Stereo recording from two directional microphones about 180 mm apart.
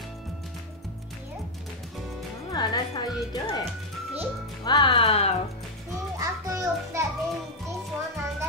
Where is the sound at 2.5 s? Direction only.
20° left (ahead or behind).